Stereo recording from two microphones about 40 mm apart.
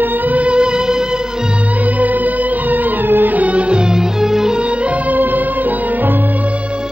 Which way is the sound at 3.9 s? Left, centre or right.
Centre.